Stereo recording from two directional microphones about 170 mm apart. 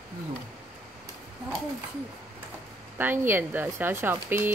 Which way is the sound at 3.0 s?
10° right (ahead or behind).